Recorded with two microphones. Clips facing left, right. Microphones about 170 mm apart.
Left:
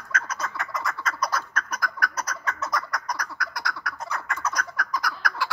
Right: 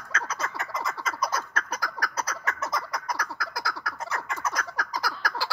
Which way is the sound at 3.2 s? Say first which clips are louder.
Even; 30° right (ahead or behind).